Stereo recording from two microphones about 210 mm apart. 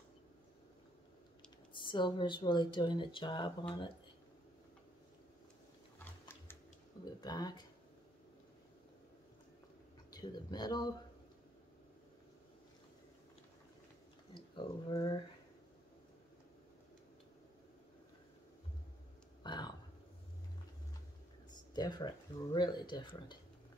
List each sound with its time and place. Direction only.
1.7 s speech: 20° left (ahead or behind)
5.9 s a sound: 10° left (ahead or behind)
7.2 s speech: 20° left (ahead or behind)
10.1 s speech: 20° left (ahead or behind)
14.3 s speech: 20° left (ahead or behind)
19.4 s burping: 20° left (ahead or behind)
21.7 s speech: 20° left (ahead or behind)